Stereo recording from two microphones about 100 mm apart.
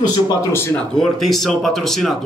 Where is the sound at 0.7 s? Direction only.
5° left (ahead or behind).